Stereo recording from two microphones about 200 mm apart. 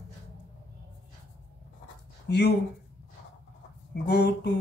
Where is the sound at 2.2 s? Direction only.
55° left (ahead or behind).